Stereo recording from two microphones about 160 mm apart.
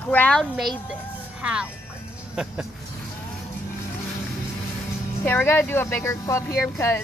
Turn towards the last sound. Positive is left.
turn(degrees=20)  # may be behind; listen again after turning